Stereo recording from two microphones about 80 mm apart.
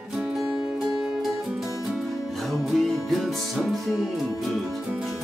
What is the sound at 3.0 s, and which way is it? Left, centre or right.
Music, centre.